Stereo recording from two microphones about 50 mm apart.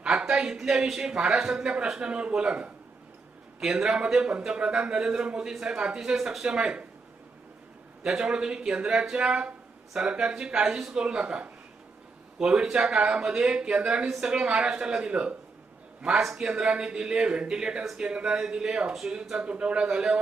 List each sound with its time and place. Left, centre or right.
0.0 s a man's voice: centre
3.6 s a man's voice: centre
6.4 s a man's voice: centre
8.0 s a man's voice: centre
14.0 s a man's voice: centre
14.3 s a man's voice: right